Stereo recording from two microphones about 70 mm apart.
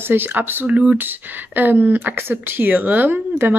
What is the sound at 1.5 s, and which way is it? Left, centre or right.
Speech, right.